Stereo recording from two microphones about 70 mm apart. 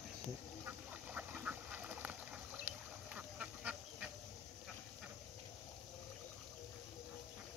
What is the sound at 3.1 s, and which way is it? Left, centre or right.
Quack, centre.